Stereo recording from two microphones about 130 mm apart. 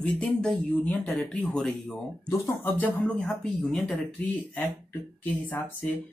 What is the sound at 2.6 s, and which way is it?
Speech, 15° left (ahead or behind).